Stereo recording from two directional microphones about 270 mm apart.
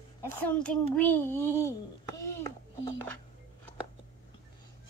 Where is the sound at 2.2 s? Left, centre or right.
Centre.